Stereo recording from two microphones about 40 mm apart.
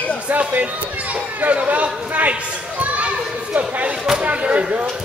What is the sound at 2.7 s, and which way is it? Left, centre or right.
Children playing, right.